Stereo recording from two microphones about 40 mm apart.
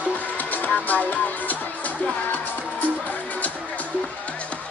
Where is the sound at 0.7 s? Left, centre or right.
Left.